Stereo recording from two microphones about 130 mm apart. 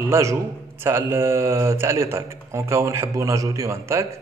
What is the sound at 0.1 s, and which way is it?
A man's voice, 20° right (ahead or behind).